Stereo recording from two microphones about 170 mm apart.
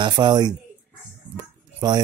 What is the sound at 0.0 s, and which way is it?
Speech, 25° right (ahead or behind).